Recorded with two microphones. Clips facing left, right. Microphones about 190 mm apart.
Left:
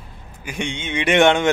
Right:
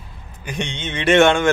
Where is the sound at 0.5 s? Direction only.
10° left (ahead or behind).